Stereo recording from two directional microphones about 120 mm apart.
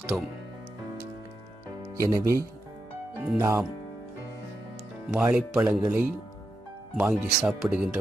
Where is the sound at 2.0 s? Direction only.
25° right (ahead or behind).